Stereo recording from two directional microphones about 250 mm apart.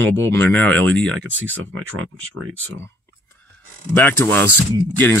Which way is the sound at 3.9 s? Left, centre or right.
Centre.